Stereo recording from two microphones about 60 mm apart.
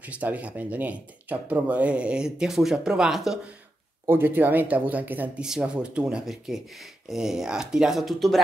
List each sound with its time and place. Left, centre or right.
0.0 s speech: right; by 3.3 s centre
4.1 s speech: right
5.4 s speech: centre